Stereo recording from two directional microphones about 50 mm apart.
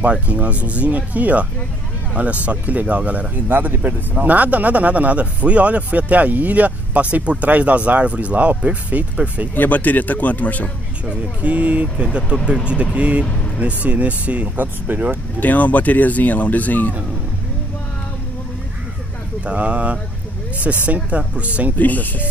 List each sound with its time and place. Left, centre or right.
0.0 s speech: right
9.6 s speech: left
11.1 s speech: right
12.0 s speech: right
15.4 s speech: left
19.4 s speech: right
21.7 s speech: left